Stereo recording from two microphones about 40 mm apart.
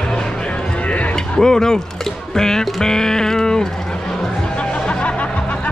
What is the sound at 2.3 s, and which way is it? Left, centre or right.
Music, centre.